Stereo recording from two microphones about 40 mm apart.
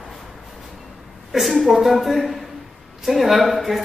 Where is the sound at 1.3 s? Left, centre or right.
Centre.